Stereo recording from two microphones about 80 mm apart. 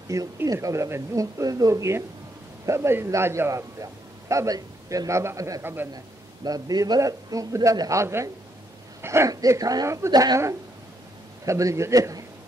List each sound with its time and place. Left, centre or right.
0.1 s a man's voice: right
5.6 s a man's voice: right
6.4 s a man's voice: right
8.0 s speech: right
9.3 s a man's voice: right
11.4 s a man's voice: right